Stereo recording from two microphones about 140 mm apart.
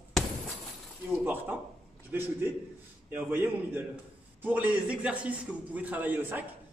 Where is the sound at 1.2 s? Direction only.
15° right (ahead or behind).